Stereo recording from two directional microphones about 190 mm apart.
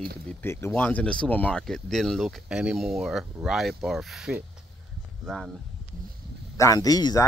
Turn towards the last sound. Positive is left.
turn(degrees=20)  # may be behind; listen again after turning